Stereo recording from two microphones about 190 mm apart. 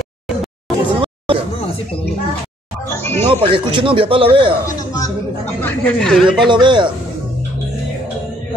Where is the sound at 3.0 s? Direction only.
10° left (ahead or behind).